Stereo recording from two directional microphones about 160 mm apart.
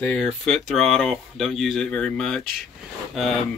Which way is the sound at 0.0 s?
5° left (ahead or behind).